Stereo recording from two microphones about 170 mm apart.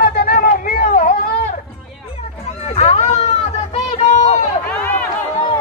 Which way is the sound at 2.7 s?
40° left (ahead or behind).